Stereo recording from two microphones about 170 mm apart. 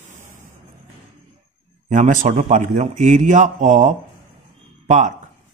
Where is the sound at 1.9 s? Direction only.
45° right (ahead or behind).